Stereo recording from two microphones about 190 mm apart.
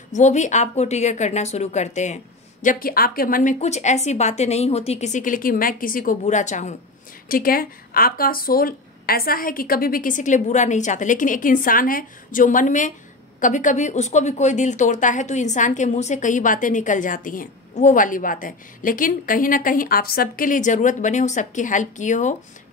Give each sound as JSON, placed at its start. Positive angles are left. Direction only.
{"t": 0.1, "sound": "speech", "side_deg": 40}
{"t": 7.2, "sound": "speech", "side_deg": 50}